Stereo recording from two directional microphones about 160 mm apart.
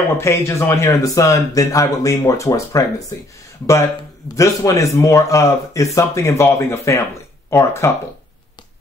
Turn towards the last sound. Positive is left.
turn(degrees=15)  # may be behind; listen again after turning